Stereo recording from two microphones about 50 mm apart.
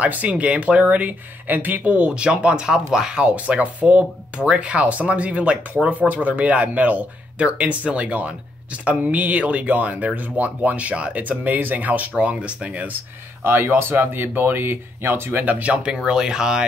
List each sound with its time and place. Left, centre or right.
0.0 s speech: right
13.4 s speech: right
15.4 s speech: right